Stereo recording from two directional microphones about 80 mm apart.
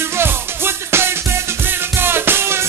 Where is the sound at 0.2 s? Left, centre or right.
Right.